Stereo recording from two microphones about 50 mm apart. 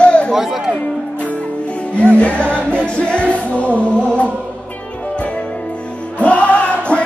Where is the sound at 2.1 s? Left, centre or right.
Left.